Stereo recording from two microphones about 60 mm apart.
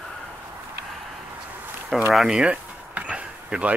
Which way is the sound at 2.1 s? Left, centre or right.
Centre.